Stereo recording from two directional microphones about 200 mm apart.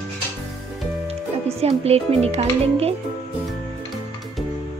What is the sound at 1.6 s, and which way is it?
Speech, 30° right (ahead or behind).